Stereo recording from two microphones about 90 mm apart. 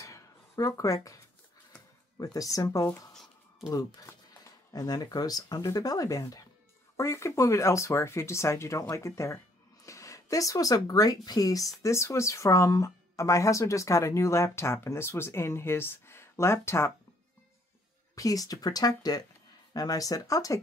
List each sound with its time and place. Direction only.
0.0 s a sound: 40° left (ahead or behind)
2.1 s speech: 40° left (ahead or behind)
4.3 s speech: 50° left (ahead or behind); by 16.9 s 30° left (ahead or behind)
18.1 s speech: 40° left (ahead or behind)